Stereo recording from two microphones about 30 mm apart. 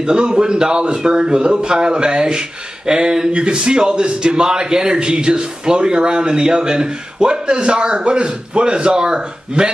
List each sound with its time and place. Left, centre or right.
0.0 s a man's voice: right